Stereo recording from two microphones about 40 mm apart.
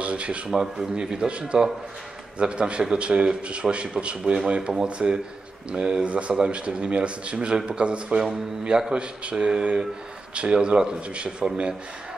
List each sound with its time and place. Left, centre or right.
0.0 s a sound: right
0.6 s a man's voice: centre
8.2 s a man's voice: centre